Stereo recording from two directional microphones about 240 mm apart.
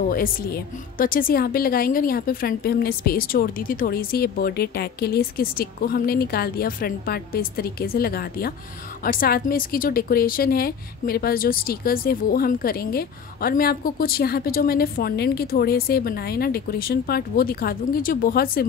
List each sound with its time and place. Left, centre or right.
0.1 s a woman's voice: left